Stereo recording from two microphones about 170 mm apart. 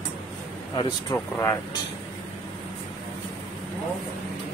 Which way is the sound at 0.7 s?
20° left (ahead or behind).